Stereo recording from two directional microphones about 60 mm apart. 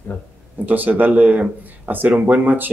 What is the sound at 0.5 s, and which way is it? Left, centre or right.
Speech, right.